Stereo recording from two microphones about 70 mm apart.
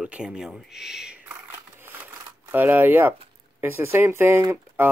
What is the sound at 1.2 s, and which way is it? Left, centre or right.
Crumpling, right.